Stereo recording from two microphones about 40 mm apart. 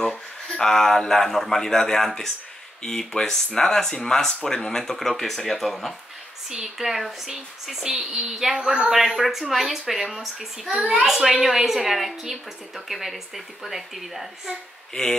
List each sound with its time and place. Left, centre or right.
0.1 s speech: centre
6.5 s a woman's voice: centre
10.8 s a child's voice: centre
11.1 s a woman's voice: centre